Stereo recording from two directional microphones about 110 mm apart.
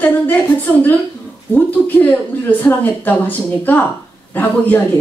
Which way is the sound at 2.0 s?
15° left (ahead or behind).